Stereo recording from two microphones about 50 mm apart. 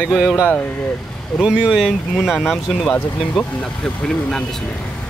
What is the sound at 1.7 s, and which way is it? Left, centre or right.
Speech, centre.